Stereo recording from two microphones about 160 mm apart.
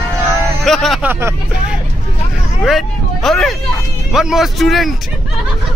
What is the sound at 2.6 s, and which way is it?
Speech, centre (ahead or behind).